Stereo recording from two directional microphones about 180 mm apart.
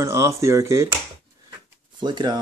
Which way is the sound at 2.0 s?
25° right (ahead or behind).